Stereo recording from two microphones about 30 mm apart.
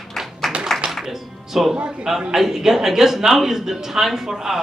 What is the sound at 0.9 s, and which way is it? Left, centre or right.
Music, centre.